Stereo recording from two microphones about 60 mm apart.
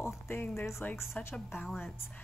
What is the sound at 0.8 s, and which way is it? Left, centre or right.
Speech, left.